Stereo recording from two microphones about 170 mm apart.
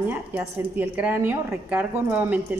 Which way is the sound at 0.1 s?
10° right (ahead or behind).